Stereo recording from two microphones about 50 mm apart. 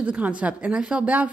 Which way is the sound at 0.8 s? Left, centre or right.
Centre.